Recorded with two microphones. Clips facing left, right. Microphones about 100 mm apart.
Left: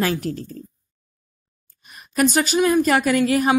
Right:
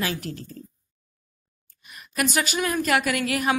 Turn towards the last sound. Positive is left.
turn(degrees=30)  # may be behind; listen again after turning